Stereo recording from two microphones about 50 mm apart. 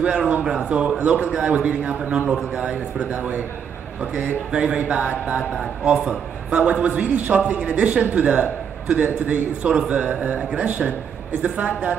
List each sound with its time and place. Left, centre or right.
0.0 s a woman's voice: right
3.1 s a man's voice: right